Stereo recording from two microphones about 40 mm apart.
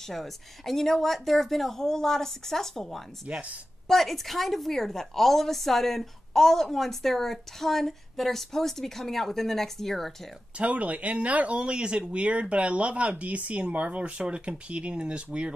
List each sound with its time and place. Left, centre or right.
0.1 s a woman's voice: centre
3.3 s speech: right
3.8 s a woman's voice: centre
10.6 s speech: right
14.2 s speech: right